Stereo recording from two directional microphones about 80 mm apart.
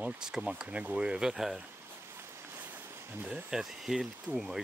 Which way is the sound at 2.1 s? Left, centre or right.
Right.